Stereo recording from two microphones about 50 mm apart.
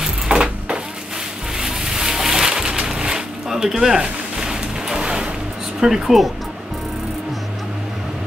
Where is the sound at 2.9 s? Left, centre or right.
Centre.